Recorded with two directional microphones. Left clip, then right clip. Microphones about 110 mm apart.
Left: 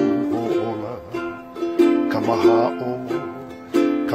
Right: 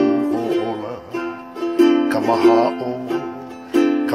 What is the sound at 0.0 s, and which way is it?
Music, 30° right (ahead or behind).